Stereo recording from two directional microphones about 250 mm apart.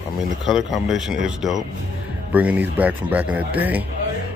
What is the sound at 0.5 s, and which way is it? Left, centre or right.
Speech, centre.